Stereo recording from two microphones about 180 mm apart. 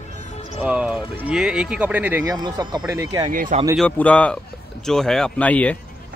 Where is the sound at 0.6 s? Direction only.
5° right (ahead or behind).